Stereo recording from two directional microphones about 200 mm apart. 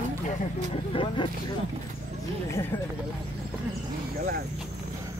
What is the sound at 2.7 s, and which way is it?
Speech, 25° left (ahead or behind).